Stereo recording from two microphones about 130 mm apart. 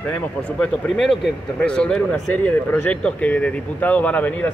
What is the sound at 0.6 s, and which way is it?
Speech, 5° left (ahead or behind).